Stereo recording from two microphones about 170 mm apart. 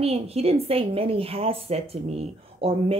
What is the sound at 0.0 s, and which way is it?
A woman's voice, 35° right (ahead or behind).